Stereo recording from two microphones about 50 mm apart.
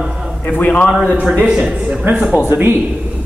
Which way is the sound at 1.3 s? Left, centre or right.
Right.